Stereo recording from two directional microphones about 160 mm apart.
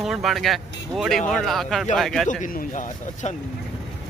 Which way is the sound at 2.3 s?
55° left (ahead or behind).